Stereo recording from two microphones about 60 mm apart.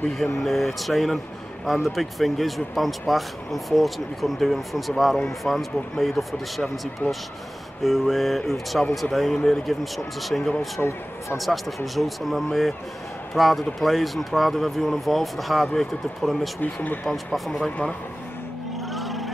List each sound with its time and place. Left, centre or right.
0.2 s speech: centre
7.8 s speech: centre
10.8 s speech: left
11.3 s speech: centre
16.6 s speech: left
17.1 s speech: centre
17.6 s speech: centre
18.9 s vehicle: centre